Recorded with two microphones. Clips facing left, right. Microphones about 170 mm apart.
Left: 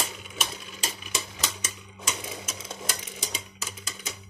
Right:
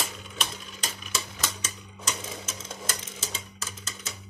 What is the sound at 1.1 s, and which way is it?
Typewriter, 15° left (ahead or behind).